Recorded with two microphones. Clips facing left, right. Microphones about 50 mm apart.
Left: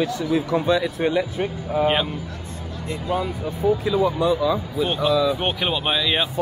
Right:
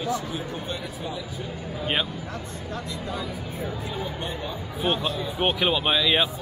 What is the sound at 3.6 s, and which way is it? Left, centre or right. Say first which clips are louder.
Speech: left 15 dB; left.